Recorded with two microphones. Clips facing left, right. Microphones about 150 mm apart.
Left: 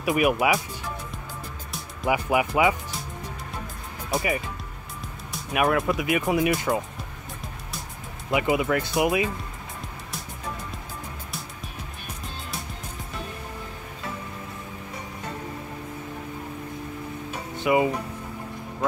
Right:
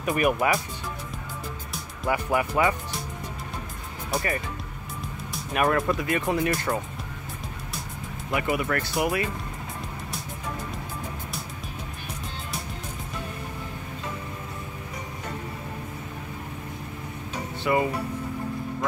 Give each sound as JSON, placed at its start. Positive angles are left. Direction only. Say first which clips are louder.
{"t": 0.0, "sound": "speech", "louder": "left 1 dB", "side_deg": 5}
{"t": 2.0, "sound": "speech", "louder": "left 2 dB", "side_deg": 10}
{"t": 4.1, "sound": "speech", "louder": "left 2 dB", "side_deg": 0}
{"t": 5.3, "sound": "speech", "louder": "left 1 dB", "side_deg": 5}
{"t": 8.3, "sound": "speech", "louder": "left 3 dB", "side_deg": 20}
{"t": 17.6, "sound": "speech", "louder": "left 3 dB", "side_deg": 15}